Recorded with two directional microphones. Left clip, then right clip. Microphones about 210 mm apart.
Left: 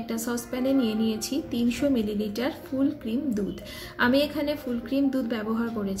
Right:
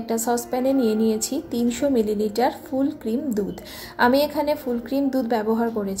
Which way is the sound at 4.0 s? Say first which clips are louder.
Right 5 dB; 5° right (ahead or behind).